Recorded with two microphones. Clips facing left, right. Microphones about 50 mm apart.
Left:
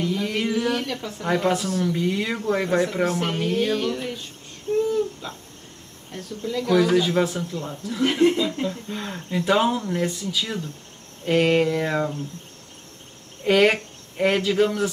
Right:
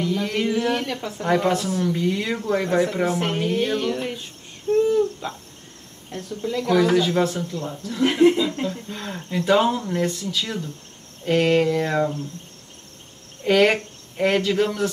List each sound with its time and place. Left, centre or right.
0.0 s speech: centre
4.7 s a sound: right
5.2 s speech: centre
6.1 s speech: centre
13.4 s speech: centre